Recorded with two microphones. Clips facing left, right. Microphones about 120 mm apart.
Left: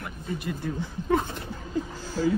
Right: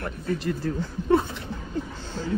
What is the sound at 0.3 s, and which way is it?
Speech, 20° left (ahead or behind).